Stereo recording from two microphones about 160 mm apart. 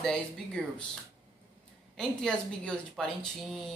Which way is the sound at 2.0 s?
5° left (ahead or behind).